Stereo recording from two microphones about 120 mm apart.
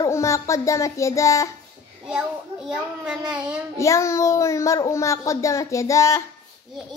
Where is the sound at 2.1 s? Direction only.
5° right (ahead or behind).